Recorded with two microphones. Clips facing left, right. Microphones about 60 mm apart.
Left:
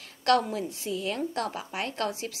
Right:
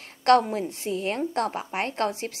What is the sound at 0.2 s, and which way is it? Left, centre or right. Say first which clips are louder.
Speech: right 5 dB; right.